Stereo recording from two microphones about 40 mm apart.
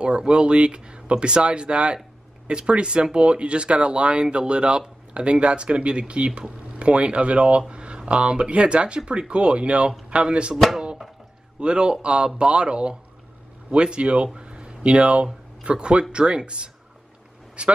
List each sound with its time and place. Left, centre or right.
0.0 s speech: right
11.6 s speech: right